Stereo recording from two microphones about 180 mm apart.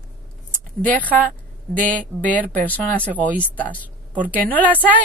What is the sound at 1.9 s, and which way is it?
A woman's voice, 10° left (ahead or behind).